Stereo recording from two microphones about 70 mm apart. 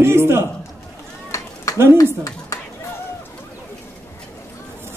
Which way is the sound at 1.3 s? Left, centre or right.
Left.